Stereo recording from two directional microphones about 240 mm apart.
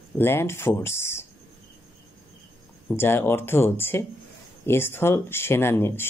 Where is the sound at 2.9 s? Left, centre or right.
Centre.